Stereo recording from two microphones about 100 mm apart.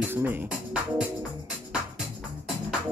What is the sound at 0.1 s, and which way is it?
Speech, 20° right (ahead or behind).